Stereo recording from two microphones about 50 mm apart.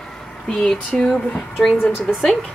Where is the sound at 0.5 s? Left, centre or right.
Centre.